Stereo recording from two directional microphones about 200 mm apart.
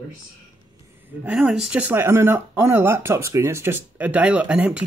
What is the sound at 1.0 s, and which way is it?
Speech, 10° right (ahead or behind).